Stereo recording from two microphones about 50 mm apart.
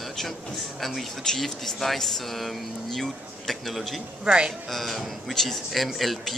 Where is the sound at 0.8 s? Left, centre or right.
Centre.